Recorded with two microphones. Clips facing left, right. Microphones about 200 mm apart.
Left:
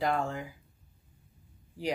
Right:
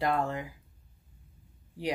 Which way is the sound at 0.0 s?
Centre (ahead or behind).